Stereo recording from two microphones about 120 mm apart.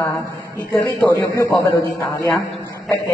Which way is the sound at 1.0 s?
25° left (ahead or behind).